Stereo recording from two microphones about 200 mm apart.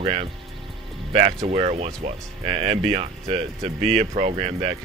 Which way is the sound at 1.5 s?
30° right (ahead or behind).